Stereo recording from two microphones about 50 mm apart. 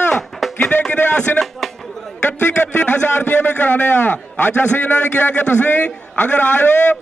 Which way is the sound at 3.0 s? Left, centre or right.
Left.